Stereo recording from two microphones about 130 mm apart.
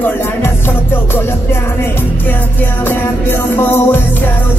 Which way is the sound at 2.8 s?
15° left (ahead or behind).